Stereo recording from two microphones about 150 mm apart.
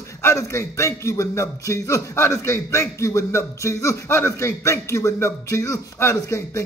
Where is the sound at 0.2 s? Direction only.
20° left (ahead or behind).